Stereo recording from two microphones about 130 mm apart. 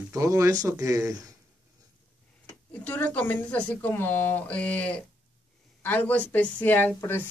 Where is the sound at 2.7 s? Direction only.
15° left (ahead or behind).